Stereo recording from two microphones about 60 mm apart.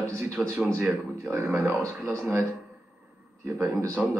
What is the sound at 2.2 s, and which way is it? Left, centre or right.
Speech, right.